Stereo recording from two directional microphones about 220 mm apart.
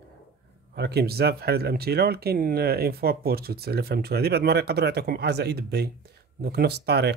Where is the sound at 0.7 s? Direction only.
45° right (ahead or behind).